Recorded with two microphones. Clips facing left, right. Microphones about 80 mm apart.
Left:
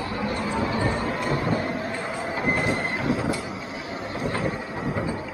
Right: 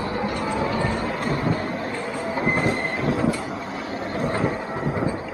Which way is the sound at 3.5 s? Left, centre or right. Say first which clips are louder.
Right 3 dB; right.